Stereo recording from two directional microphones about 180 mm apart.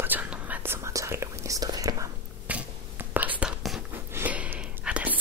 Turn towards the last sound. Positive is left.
turn(degrees=-10)  # may be behind; listen again after turning